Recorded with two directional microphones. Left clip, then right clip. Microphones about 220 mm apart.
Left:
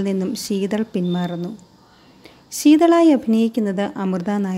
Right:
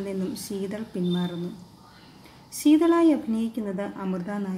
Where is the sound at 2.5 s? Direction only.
40° left (ahead or behind).